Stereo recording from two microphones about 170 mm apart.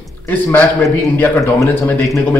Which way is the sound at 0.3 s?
10° left (ahead or behind).